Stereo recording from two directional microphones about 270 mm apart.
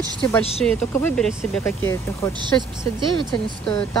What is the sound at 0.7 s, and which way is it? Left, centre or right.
Speech, centre.